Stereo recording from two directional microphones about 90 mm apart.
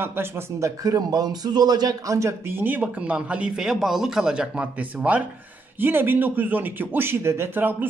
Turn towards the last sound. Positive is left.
turn(degrees=-20)  # may be behind; listen again after turning